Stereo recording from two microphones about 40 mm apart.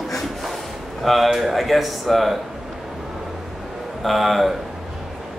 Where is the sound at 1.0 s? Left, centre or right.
Centre.